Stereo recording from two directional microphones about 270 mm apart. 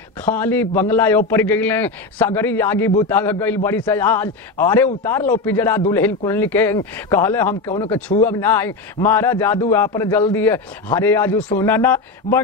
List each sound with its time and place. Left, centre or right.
0.2 s a man's voice: centre